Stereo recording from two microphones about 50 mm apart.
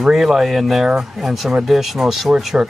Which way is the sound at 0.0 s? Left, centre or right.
Centre.